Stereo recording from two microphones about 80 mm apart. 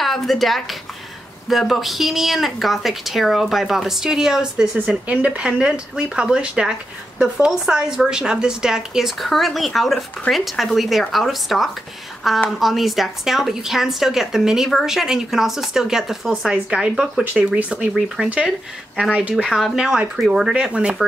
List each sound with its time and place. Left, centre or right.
0.0 s speech: centre
19.3 s speech: centre